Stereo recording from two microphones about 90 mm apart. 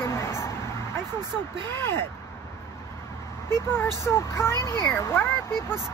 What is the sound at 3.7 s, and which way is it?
Speech, 30° left (ahead or behind).